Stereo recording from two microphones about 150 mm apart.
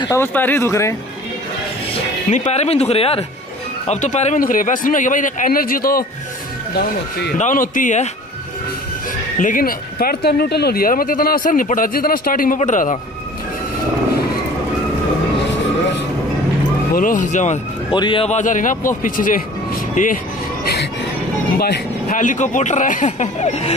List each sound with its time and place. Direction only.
0.1 s speech: 15° left (ahead or behind)
2.2 s speech: 55° left (ahead or behind); by 6.0 s 75° left (ahead or behind)
6.7 s speech: 90° left
7.3 s speech: 60° left (ahead or behind)
9.4 s speech: 65° left (ahead or behind)
12.5 s speech: 55° left (ahead or behind)
16.9 s speech: 65° left (ahead or behind)
17.9 s speech: 35° left (ahead or behind)
18.3 s speech: 60° left (ahead or behind)
22.1 s speech: 60° left (ahead or behind)